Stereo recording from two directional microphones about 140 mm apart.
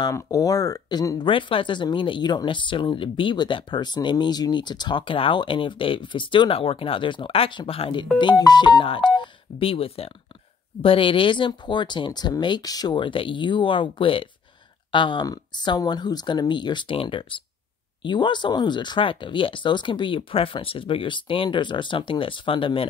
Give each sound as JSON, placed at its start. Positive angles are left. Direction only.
{"t": 0.0, "sound": "speech", "side_deg": 25}